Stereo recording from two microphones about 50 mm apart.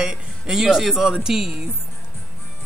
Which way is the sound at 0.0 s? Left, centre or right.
Centre.